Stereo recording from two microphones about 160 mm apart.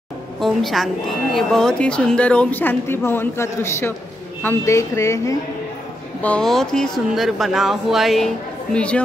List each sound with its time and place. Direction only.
0.4 s a woman's voice: centre (ahead or behind); by 5.4 s 20° left (ahead or behind)
6.2 s a woman's voice: 5° left (ahead or behind)